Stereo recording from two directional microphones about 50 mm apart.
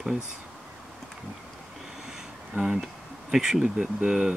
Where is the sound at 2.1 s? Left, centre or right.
Centre.